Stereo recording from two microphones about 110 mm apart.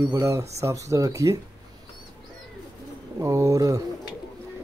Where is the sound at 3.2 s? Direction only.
30° right (ahead or behind).